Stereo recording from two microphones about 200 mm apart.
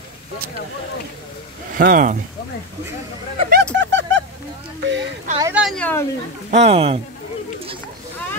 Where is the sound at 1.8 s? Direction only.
45° right (ahead or behind).